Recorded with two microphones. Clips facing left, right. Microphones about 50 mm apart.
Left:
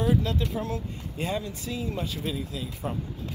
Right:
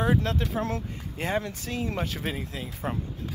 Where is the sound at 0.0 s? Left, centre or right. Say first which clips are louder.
Even; right.